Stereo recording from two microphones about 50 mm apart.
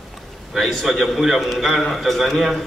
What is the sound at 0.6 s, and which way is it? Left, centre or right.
A man's voice, centre.